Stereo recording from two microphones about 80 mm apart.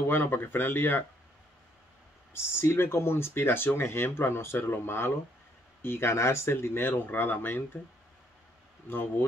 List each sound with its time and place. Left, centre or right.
0.1 s speech: left
2.3 s speech: left
8.8 s speech: left